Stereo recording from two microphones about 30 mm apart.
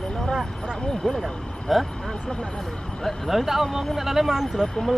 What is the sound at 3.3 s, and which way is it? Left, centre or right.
Speech, centre.